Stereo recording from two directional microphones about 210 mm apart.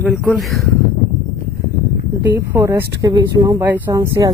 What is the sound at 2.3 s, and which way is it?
Speech, 10° right (ahead or behind).